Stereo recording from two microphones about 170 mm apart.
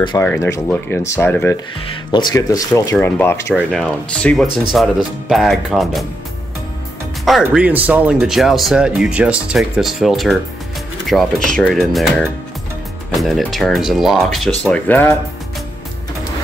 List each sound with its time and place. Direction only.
0.2 s speech: 15° left (ahead or behind)
1.9 s speech: 25° left (ahead or behind); by 6.0 s centre (ahead or behind)
7.2 s speech: 5° right (ahead or behind)